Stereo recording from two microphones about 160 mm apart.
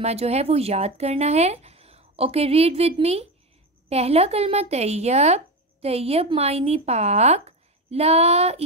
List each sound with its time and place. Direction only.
0.0 s speech: 40° right (ahead or behind)